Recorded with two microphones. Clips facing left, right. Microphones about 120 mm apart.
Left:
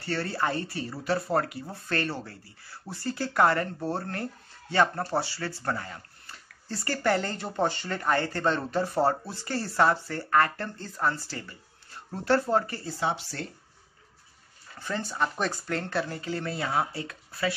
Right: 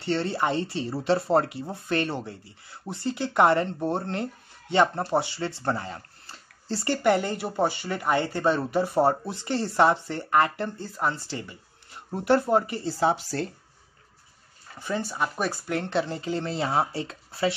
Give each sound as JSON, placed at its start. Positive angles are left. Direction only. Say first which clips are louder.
{"t": 0.0, "sound": "speech", "louder": "right 4 dB", "side_deg": -20}
{"t": 12.8, "sound": "speech", "louder": "right 6 dB", "side_deg": -40}
{"t": 14.8, "sound": "speech", "louder": "right 2 dB", "side_deg": -15}